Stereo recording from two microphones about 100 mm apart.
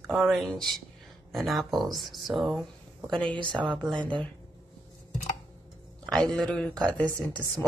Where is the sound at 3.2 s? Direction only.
50° right (ahead or behind).